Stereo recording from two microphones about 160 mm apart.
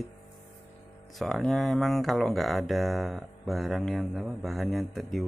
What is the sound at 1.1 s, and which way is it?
Speech, centre (ahead or behind).